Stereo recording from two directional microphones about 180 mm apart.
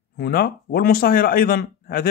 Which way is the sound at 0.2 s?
55° left (ahead or behind).